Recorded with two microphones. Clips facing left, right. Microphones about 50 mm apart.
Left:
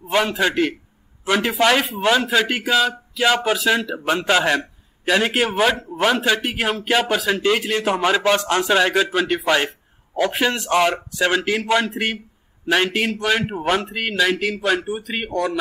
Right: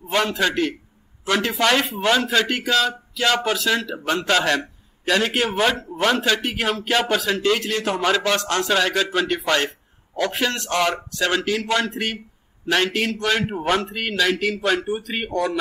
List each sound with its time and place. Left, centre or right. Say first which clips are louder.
0.1 s a man's voice: left 2 dB; centre